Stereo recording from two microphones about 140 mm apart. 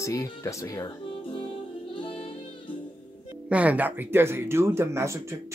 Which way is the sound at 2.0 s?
40° left (ahead or behind).